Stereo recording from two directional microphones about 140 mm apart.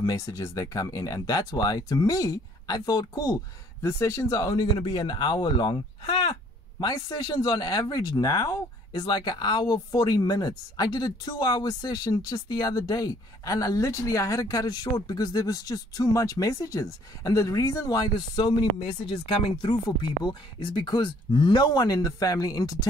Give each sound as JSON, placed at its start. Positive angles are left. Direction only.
{"t": 0.0, "sound": "speech", "side_deg": 25}